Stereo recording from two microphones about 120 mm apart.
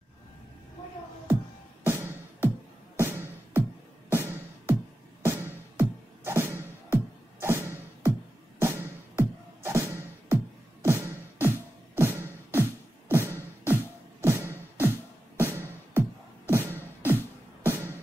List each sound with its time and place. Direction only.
1.9 s music: 20° right (ahead or behind)
13.1 s beatboxing: 20° right (ahead or behind)
17.6 s music: 20° right (ahead or behind)